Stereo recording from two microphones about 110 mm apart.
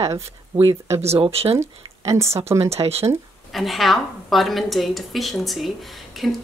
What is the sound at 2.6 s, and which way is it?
Speech, 70° right (ahead or behind).